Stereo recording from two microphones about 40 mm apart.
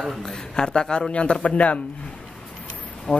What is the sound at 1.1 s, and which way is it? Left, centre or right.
Speech, left.